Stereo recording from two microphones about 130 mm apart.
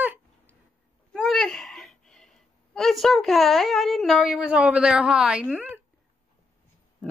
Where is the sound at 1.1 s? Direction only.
Centre (ahead or behind).